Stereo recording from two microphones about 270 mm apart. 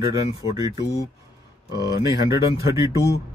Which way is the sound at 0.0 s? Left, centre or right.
Centre.